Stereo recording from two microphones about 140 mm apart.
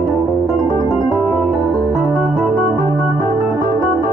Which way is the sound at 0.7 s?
35° left (ahead or behind).